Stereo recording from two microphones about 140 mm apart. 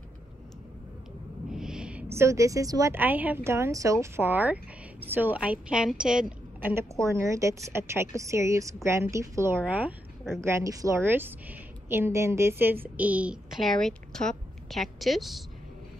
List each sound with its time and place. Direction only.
1.5 s a sound: 5° right (ahead or behind); by 2.9 s 25° right (ahead or behind)
2.9 s a woman's voice: 15° right (ahead or behind)
6.7 s a woman's voice: 20° right (ahead or behind)
10.4 s a woman's voice: 20° right (ahead or behind); by 15.4 s centre (ahead or behind)